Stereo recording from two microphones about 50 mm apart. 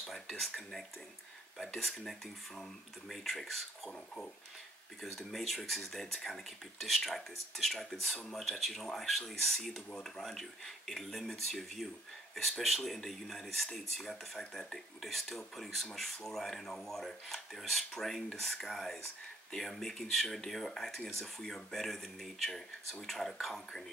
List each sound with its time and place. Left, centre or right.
0.0 s speech: centre
3.9 s speech: centre
5.0 s speech: centre